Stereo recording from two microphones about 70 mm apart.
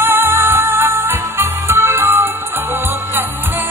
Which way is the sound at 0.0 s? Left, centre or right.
Right.